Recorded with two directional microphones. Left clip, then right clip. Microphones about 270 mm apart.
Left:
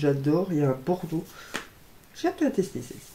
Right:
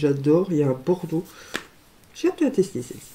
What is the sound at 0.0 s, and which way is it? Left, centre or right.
Speech, centre.